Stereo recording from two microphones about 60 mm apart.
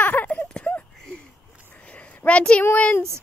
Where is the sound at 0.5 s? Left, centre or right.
Left.